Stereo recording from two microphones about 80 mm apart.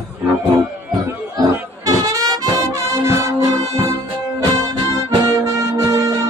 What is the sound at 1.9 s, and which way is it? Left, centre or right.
Music, right.